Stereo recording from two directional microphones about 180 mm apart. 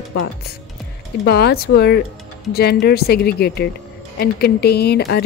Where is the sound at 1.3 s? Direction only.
60° left (ahead or behind).